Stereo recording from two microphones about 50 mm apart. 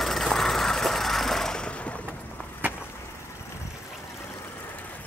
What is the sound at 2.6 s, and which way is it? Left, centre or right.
Vehicle, right.